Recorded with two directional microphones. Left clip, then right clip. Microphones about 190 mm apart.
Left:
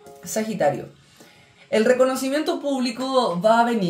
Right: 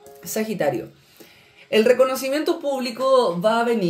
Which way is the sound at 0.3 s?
45° right (ahead or behind).